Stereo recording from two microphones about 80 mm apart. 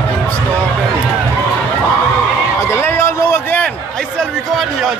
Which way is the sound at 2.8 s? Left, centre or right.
Left.